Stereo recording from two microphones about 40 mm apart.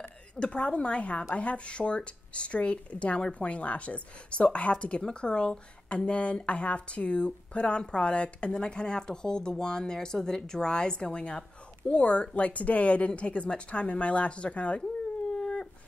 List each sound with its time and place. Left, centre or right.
0.4 s speech: left
15.3 s dog: centre